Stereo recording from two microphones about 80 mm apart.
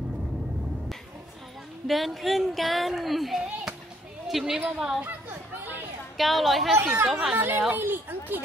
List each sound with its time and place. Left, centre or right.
1.9 s a woman's voice: centre
4.6 s speech: centre
6.1 s speech: centre
6.8 s speech: right
7.2 s speech: centre